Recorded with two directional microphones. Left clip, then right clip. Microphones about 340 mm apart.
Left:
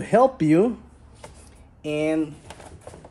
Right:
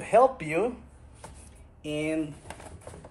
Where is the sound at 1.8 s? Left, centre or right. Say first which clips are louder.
Left 7 dB; left.